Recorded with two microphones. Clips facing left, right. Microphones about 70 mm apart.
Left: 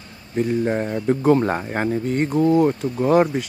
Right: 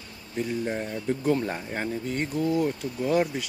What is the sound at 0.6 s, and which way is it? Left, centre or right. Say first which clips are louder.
Speech: left 8 dB; left.